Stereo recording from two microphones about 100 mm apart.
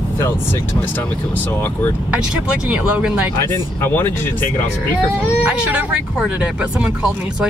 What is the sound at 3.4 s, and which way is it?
Speech, 25° left (ahead or behind).